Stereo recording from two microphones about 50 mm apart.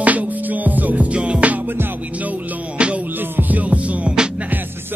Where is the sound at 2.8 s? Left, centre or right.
Right.